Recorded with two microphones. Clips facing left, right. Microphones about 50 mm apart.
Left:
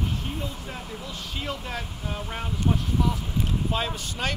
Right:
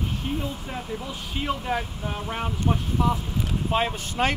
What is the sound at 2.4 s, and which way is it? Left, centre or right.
Speech, right.